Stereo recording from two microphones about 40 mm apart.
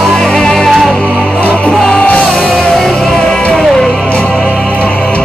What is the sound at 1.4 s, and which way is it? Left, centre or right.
Music, left.